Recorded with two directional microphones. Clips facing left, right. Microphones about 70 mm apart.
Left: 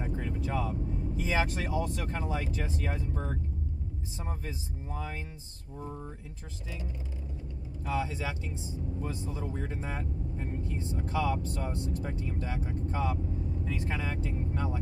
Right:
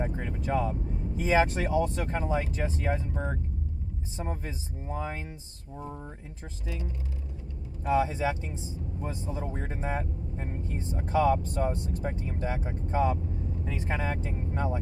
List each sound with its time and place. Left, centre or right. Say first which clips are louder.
0.1 s speech: right 3 dB; right
7.9 s speech: right 7 dB; right